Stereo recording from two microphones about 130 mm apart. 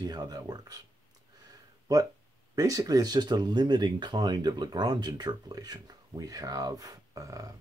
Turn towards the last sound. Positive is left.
turn(degrees=-25)  # may be behind; listen again after turning